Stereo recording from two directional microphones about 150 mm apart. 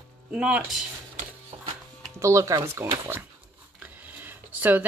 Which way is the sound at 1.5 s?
35° right (ahead or behind).